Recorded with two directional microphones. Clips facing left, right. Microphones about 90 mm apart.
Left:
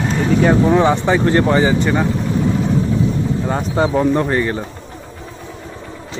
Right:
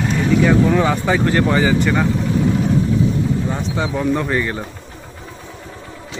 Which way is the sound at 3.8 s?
30° left (ahead or behind).